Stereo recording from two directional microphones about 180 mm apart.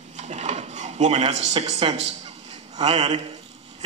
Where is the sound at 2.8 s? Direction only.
35° right (ahead or behind).